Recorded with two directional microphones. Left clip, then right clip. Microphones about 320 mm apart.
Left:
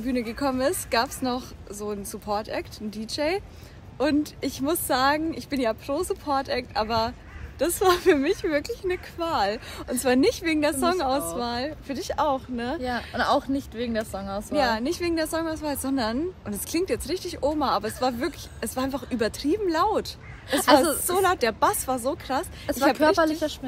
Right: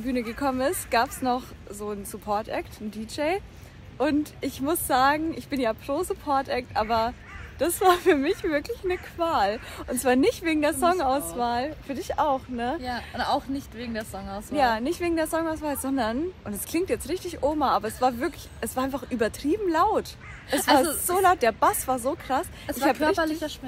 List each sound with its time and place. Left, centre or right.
0.0 s speech: centre
13.2 s speech: centre
14.5 s speech: centre
21.1 s speech: centre